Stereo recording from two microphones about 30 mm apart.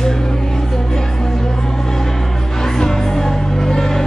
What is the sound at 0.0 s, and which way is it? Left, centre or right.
Music, left.